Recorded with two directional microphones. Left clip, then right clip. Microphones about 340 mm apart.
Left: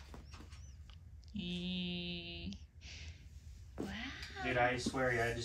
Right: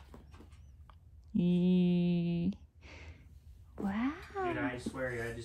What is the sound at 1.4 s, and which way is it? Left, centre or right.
Mantra, centre.